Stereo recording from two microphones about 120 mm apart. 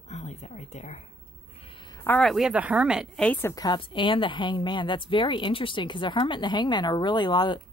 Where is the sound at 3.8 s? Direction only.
45° left (ahead or behind).